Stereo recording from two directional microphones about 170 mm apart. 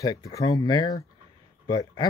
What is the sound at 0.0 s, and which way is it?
Speech, 20° left (ahead or behind).